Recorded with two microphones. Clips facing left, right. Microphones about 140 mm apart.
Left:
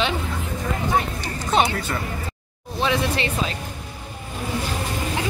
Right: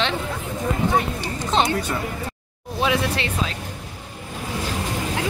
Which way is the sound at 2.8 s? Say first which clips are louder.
Even; centre (ahead or behind).